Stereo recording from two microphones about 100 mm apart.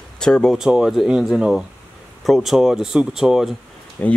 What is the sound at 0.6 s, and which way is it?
Speech, 5° right (ahead or behind).